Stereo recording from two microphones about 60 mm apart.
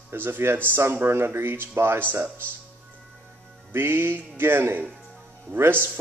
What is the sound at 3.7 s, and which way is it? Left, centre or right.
Speech, right.